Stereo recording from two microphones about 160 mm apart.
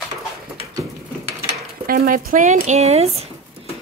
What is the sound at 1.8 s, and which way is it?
Speech, 65° right (ahead or behind).